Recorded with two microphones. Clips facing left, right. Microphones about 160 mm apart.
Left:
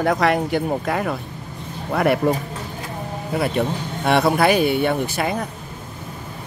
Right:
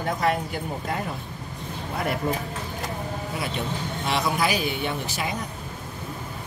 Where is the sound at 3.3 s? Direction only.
60° left (ahead or behind).